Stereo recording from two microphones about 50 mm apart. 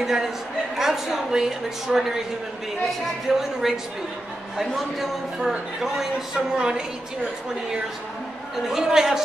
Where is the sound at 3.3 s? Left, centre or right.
Centre.